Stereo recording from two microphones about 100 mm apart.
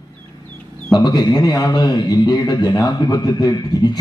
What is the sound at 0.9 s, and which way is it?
A man's voice, 45° left (ahead or behind).